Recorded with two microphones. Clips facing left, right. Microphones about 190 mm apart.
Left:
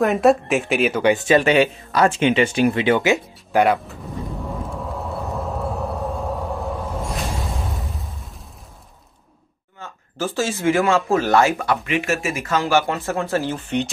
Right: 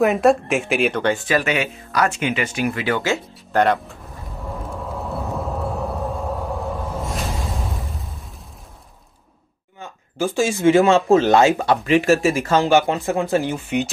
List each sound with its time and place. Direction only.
0.0 s speech: centre (ahead or behind)
1.0 s speech: 20° left (ahead or behind)
3.6 s speech: 5° left (ahead or behind)
4.5 s vehicle: centre (ahead or behind)
9.8 s speech: 15° right (ahead or behind)